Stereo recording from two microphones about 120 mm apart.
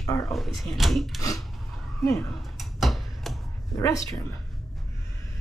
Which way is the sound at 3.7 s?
30° left (ahead or behind).